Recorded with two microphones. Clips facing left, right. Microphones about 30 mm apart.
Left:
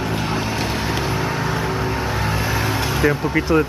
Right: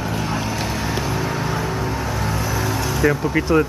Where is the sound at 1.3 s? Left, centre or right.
Centre.